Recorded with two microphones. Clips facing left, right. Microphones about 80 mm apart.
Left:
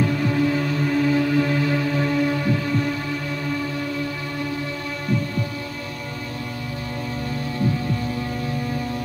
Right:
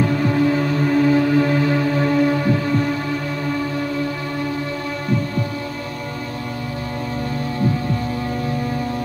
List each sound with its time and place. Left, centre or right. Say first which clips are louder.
0.0 s music: right 3 dB; right